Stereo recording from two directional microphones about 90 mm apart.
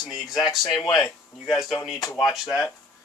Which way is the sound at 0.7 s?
45° left (ahead or behind).